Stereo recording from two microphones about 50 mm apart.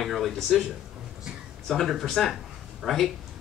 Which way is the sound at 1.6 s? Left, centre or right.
Centre.